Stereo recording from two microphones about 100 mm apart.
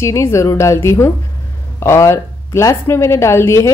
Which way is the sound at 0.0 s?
30° left (ahead or behind).